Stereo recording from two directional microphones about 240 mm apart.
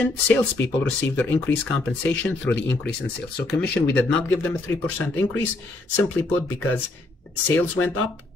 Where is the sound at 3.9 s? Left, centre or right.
Centre.